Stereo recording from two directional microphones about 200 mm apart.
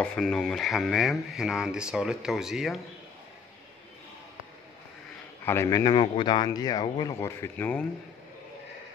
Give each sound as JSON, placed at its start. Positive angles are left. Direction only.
{"t": 0.0, "sound": "speech", "side_deg": 5}
{"t": 5.4, "sound": "a man's voice", "side_deg": 10}